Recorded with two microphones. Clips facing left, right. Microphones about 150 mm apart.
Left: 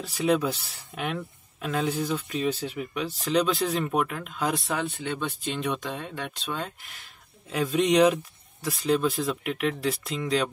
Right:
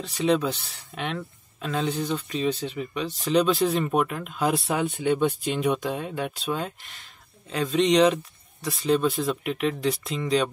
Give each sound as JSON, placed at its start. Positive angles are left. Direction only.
{"t": 0.0, "sound": "speech", "side_deg": 5}
{"t": 7.4, "sound": "speech", "side_deg": 5}